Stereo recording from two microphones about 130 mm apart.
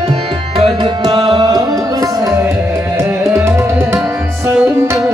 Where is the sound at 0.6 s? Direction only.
45° right (ahead or behind); by 4.0 s 20° right (ahead or behind).